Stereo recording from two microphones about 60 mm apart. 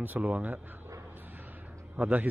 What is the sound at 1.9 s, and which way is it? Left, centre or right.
Speech, right.